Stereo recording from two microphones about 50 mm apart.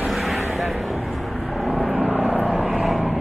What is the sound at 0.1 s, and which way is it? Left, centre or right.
Vehicle, centre.